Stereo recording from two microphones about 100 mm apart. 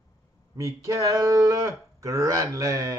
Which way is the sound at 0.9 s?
35° right (ahead or behind).